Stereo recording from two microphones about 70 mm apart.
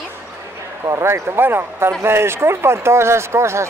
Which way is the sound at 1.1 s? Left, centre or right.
Right.